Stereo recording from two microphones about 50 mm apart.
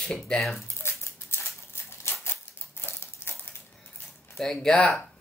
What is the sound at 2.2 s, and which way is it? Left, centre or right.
Typewriter, left.